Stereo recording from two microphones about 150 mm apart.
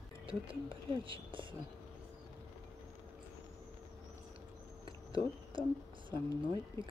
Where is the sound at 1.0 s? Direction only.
35° right (ahead or behind).